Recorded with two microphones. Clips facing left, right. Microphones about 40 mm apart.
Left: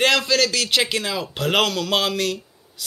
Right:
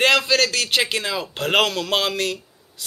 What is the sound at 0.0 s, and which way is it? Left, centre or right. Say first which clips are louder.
A man's voice: right 1 dB; centre.